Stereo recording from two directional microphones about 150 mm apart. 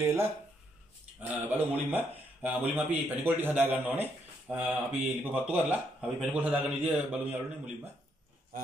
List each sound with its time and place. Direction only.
0.0 s speech: 15° right (ahead or behind)